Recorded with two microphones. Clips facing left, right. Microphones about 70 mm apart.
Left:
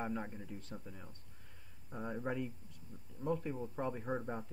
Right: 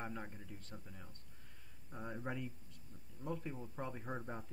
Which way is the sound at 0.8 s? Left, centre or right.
Centre.